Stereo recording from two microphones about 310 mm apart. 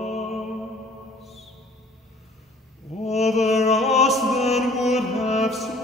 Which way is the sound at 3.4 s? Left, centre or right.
Left.